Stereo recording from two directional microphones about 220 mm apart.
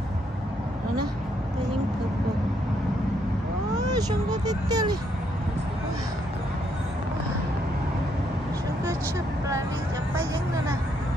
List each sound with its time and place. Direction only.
3.7 s vehicle: 15° right (ahead or behind)